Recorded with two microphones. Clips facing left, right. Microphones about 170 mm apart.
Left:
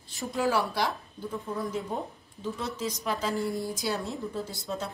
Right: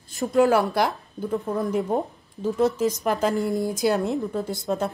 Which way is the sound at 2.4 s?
45° right (ahead or behind).